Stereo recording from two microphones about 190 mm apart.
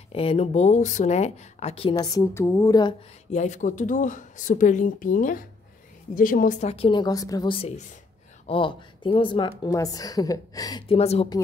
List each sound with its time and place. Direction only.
0.1 s speech: 30° left (ahead or behind)
3.3 s a woman's voice: 40° left (ahead or behind); by 11.0 s 20° left (ahead or behind)
11.0 s speech: 35° left (ahead or behind)